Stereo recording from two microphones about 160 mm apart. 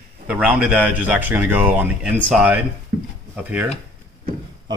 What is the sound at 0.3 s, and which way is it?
Speech, 10° right (ahead or behind).